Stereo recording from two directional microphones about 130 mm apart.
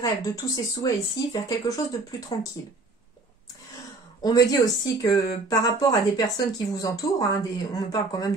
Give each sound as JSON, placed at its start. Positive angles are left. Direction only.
{"t": 0.0, "sound": "speech", "side_deg": 30}
{"t": 4.2, "sound": "speech", "side_deg": 30}